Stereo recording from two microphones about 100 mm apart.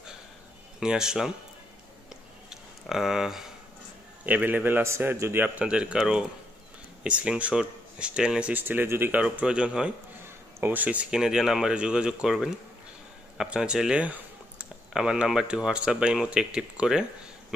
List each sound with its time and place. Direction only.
0.7 s speech: 5° right (ahead or behind)
2.5 s speech: 5° right (ahead or behind)
4.3 s a man's voice: 15° right (ahead or behind)
5.4 s speech: 10° right (ahead or behind)
9.2 s speech: 10° right (ahead or behind)